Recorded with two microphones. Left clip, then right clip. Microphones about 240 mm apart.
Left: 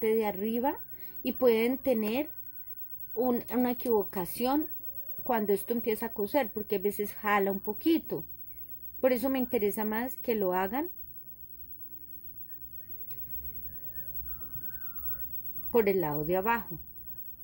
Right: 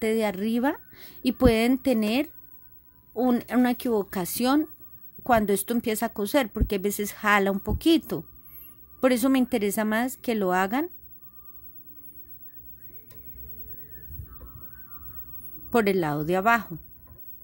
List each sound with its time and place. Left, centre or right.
0.0 s a woman's voice: right
15.7 s a woman's voice: right